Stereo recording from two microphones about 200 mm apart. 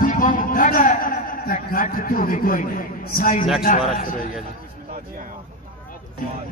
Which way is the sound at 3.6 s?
40° left (ahead or behind).